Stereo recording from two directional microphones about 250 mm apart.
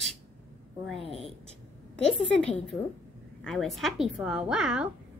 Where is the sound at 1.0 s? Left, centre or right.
Left.